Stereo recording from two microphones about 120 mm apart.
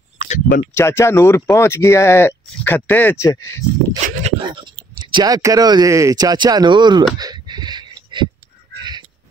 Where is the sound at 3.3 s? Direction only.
25° left (ahead or behind).